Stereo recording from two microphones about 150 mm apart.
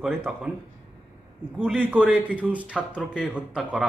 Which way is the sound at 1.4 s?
5° left (ahead or behind).